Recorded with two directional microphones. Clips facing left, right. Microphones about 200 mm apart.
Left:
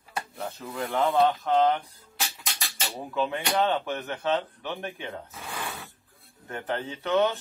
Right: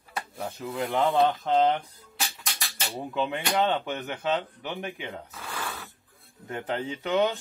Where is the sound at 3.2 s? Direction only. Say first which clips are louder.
Even; 20° right (ahead or behind).